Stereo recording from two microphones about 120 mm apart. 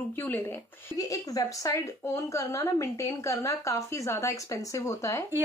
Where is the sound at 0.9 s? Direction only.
30° left (ahead or behind).